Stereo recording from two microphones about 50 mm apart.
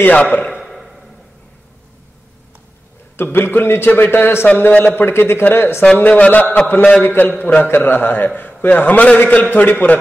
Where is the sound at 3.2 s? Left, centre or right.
Left.